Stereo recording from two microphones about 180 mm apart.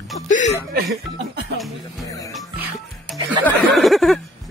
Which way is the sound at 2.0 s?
20° left (ahead or behind).